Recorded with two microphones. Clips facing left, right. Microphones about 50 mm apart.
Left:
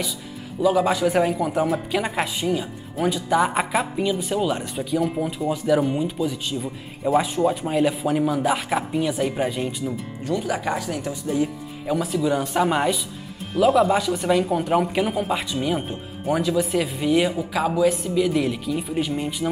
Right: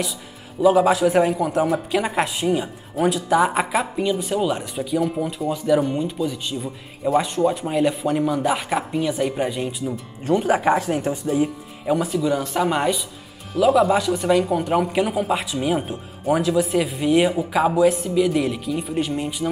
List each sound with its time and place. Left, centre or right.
0.6 s a man's voice: centre
0.8 s speech: centre
10.2 s speech: right
11.2 s speech: centre
17.5 s speech: centre
17.7 s speech: centre